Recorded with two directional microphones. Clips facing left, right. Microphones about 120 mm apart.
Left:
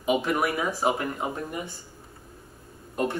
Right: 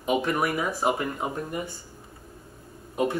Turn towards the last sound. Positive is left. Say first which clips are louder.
# right 2 dB
turn(degrees=-5)  # may be behind; listen again after turning